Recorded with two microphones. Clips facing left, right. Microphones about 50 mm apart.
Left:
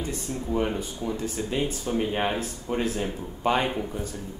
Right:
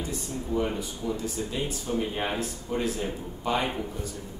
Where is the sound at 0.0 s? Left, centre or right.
Left.